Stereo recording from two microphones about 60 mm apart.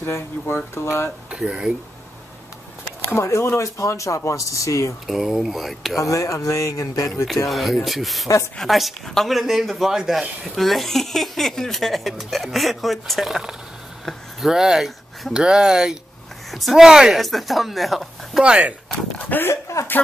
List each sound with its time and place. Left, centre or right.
0.0 s speech: left
1.3 s speech: centre
3.1 s speech: left
5.0 s speech: centre
5.9 s speech: left
7.4 s speech: centre
16.4 s speech: centre
16.8 s speech: centre
17.2 s speech: centre
18.4 s speech: right
19.1 s speech: left
19.5 s speech: left